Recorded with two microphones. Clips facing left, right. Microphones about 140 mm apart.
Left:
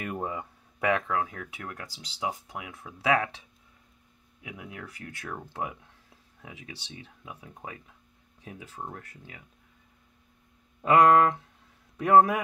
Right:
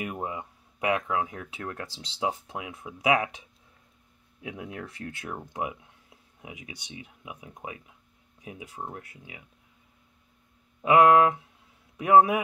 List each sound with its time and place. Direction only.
0.0 s speech: 10° right (ahead or behind)
4.4 s speech: 30° right (ahead or behind); by 9.4 s 10° right (ahead or behind)
10.8 s speech: 5° right (ahead or behind)